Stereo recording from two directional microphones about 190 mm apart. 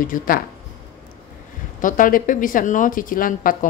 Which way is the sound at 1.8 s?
45° left (ahead or behind).